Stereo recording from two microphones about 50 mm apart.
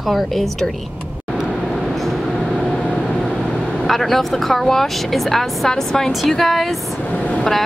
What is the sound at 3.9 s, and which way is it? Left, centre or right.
A woman's voice, centre.